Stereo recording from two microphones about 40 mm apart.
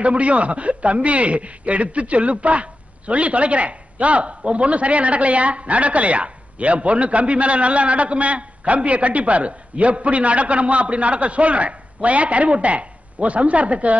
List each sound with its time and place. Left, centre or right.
0.0 s a man's voice: right